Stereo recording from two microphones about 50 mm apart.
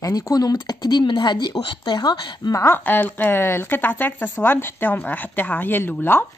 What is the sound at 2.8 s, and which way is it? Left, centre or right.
Speech, left.